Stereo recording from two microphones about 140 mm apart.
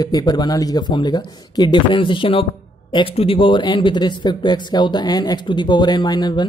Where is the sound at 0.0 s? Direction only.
25° left (ahead or behind).